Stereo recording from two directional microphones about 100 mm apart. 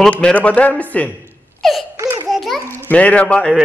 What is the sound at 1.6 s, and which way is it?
Laughter, centre (ahead or behind).